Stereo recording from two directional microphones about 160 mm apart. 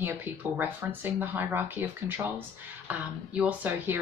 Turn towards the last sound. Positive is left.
turn(degrees=-10)  # may be behind; listen again after turning